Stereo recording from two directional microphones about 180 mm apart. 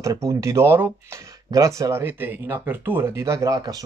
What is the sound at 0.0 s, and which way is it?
Speech, 15° right (ahead or behind).